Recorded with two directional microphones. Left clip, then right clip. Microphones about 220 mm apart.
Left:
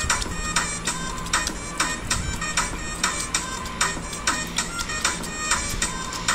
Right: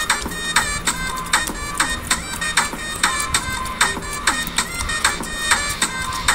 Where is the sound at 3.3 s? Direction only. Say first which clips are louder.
Right 6 dB; 50° right (ahead or behind).